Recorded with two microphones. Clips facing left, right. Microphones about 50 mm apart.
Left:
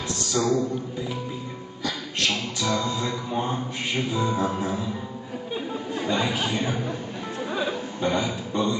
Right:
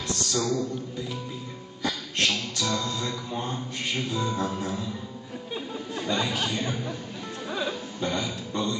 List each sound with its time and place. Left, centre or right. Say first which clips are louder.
0.3 s a man's voice: left 5 dB; centre
2.3 s speech: left 3 dB; centre
5.5 s chatter: left 4 dB; centre
7.4 s a sound: left 3 dB; centre